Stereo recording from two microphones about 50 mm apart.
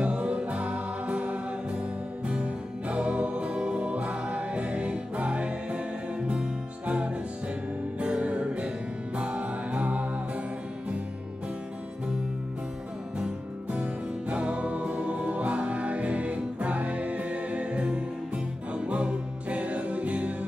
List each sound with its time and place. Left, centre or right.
0.0 s music: right
8.0 s music: right
14.3 s music: right